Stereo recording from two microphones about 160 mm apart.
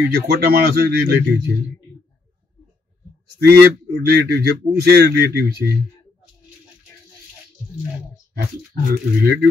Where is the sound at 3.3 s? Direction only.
85° right.